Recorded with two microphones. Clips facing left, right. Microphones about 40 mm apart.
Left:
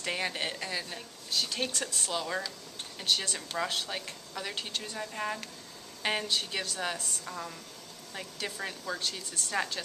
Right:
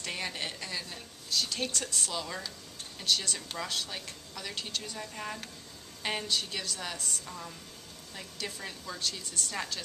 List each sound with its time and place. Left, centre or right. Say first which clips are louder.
0.0 s a woman's voice: left 3 dB; centre
9.0 s a woman's voice: even; centre